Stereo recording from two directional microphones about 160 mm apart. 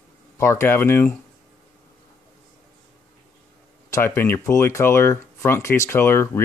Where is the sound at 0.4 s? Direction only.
15° left (ahead or behind).